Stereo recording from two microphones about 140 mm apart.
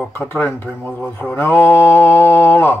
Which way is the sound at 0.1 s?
15° left (ahead or behind).